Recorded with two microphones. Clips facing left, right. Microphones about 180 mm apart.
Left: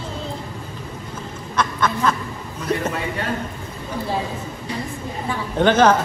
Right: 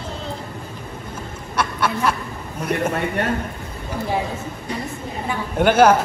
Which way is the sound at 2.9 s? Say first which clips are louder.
Right 4 dB; 60° right (ahead or behind).